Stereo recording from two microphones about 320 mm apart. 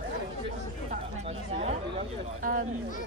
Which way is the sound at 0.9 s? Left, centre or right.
Centre.